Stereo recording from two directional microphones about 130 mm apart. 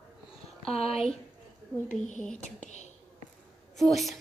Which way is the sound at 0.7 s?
50° left (ahead or behind).